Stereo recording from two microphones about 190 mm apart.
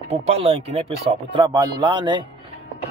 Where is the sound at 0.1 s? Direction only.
35° right (ahead or behind).